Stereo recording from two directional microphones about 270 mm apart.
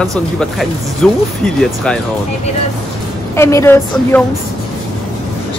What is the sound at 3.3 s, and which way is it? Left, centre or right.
Speech, centre.